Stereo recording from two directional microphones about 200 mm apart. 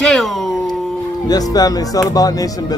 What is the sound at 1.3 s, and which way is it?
A man's voice, 20° left (ahead or behind).